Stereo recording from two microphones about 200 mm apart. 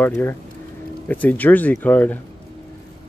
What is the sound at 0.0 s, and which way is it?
Speech, 10° left (ahead or behind).